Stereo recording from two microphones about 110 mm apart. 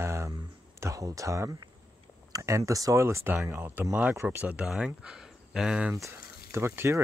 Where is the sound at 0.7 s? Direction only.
30° right (ahead or behind); by 5.9 s 10° right (ahead or behind).